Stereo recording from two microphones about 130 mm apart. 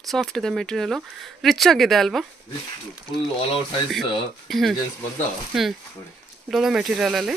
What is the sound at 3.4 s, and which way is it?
Speech, 40° left (ahead or behind).